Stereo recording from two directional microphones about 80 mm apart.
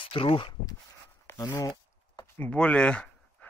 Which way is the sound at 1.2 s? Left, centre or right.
Left.